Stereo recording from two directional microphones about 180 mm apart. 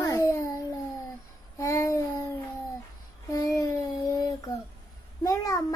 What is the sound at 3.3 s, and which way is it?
A child's voice, 20° left (ahead or behind).